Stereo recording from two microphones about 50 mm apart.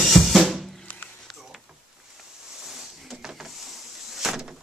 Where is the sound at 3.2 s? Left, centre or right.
Centre.